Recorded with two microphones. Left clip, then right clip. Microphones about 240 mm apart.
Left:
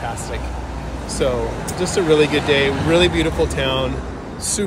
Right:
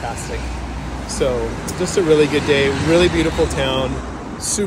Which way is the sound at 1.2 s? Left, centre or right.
Centre.